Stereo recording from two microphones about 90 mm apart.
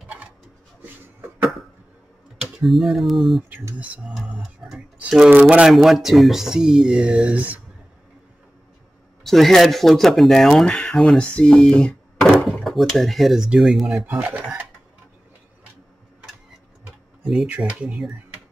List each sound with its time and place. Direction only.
2.6 s speech: centre (ahead or behind)
3.7 s speech: 15° right (ahead or behind)
9.2 s speech: 5° left (ahead or behind)
14.4 s a sound: 20° right (ahead or behind)
17.5 s speech: 15° right (ahead or behind)